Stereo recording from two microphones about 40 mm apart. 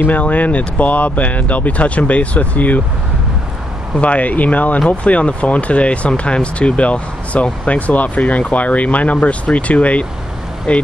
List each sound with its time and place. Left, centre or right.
0.1 s speech: left
4.0 s speech: left
4.7 s speech: left